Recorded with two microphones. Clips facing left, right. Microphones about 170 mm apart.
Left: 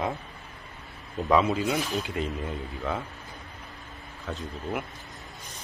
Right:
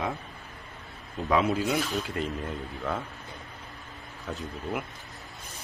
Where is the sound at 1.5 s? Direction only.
5° left (ahead or behind).